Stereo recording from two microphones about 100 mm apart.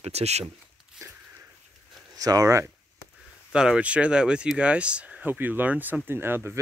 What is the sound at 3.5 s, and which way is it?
Speech, 10° right (ahead or behind).